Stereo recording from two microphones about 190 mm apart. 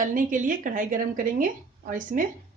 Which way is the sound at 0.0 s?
45° right (ahead or behind).